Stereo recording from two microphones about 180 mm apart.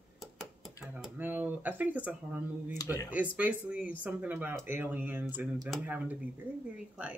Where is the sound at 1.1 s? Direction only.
10° right (ahead or behind).